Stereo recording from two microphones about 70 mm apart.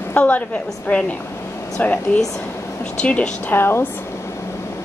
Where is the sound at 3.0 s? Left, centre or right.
Centre.